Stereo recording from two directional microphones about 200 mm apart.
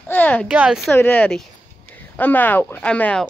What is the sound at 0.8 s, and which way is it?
Speech, 10° left (ahead or behind).